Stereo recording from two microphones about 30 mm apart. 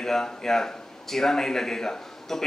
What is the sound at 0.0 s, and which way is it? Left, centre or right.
A man's voice, centre.